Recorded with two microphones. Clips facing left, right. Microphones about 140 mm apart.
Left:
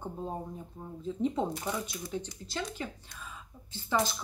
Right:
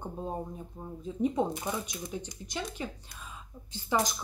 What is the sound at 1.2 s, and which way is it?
Speech, 15° right (ahead or behind).